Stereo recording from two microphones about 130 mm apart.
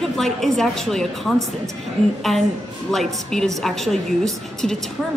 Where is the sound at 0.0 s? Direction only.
Centre (ahead or behind).